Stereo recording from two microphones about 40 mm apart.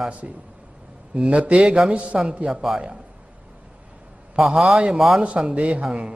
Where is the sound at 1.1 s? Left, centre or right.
Right.